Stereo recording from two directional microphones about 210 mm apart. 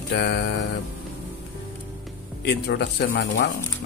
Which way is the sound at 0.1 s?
50° left (ahead or behind).